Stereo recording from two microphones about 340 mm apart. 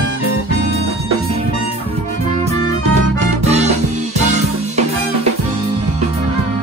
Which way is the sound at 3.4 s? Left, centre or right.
Centre.